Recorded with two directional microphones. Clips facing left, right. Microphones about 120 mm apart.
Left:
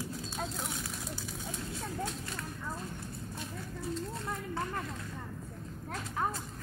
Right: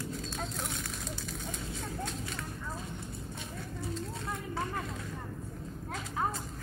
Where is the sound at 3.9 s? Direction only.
Centre (ahead or behind).